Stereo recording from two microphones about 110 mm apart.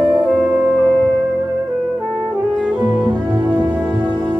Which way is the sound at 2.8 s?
40° right (ahead or behind).